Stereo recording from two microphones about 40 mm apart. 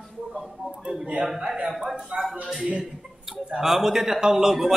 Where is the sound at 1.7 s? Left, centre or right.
Centre.